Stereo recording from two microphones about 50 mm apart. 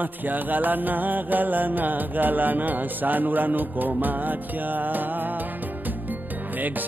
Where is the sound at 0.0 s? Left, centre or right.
Right.